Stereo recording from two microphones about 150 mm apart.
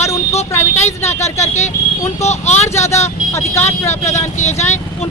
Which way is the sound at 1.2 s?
20° left (ahead or behind).